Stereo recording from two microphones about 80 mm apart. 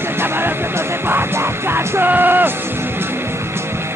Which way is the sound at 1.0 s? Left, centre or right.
Right.